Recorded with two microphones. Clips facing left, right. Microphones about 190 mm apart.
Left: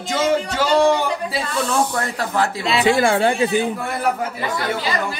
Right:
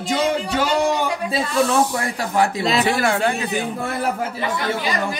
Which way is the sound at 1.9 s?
10° right (ahead or behind).